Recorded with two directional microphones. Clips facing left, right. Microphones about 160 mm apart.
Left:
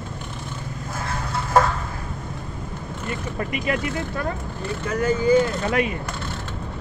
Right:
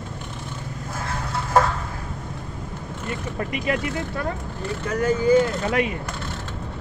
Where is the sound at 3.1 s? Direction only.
30° right (ahead or behind).